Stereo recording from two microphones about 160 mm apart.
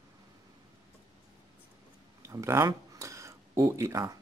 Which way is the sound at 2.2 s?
20° right (ahead or behind).